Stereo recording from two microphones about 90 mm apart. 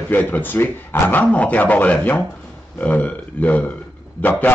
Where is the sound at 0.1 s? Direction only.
20° left (ahead or behind).